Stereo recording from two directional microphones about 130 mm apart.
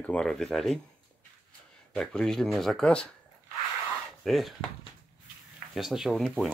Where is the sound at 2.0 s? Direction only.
5° left (ahead or behind).